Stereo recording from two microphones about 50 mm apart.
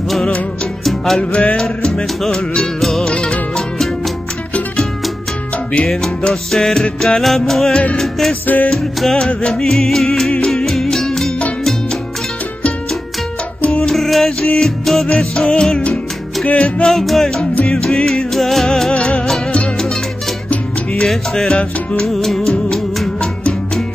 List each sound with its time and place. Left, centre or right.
0.8 s music: centre
1.3 s music: left
5.9 s music: centre
13.7 s music: centre
13.9 s music: centre
16.5 s music: centre
16.8 s music: centre
18.9 s music: left
19.2 s music: centre
21.0 s music: centre